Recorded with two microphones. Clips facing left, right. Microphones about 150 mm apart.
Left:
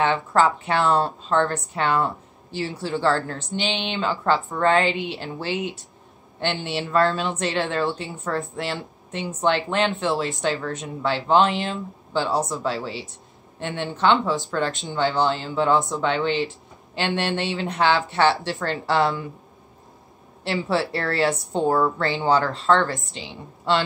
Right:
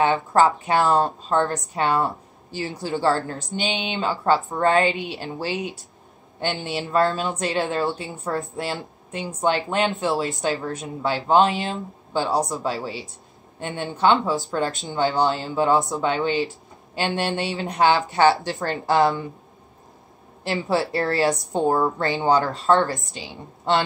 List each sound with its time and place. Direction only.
0.0 s a woman's voice: 15° right (ahead or behind)
3.7 s speech: 45° right (ahead or behind)
4.2 s a woman's voice: 20° right (ahead or behind)
14.5 s a woman's voice: 20° right (ahead or behind)
20.4 s a woman's voice: 15° right (ahead or behind)